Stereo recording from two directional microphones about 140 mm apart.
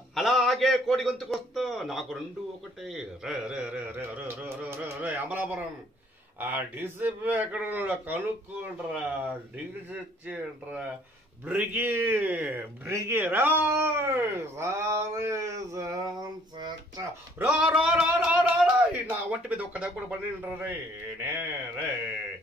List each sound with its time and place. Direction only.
0.1 s a sound: centre (ahead or behind)
6.4 s a man's voice: 15° right (ahead or behind)
10.2 s a man's voice: 10° right (ahead or behind); by 17.0 s 30° right (ahead or behind)
17.4 s a man's voice: 5° right (ahead or behind)